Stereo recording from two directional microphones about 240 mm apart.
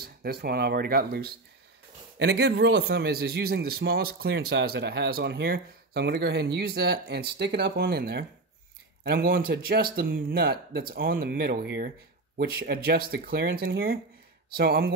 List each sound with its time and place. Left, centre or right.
0.0 s speech: right